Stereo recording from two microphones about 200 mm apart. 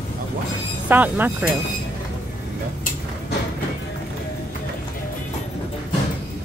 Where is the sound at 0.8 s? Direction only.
10° right (ahead or behind).